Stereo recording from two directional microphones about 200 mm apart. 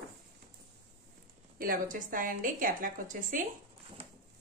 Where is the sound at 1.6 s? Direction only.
45° right (ahead or behind).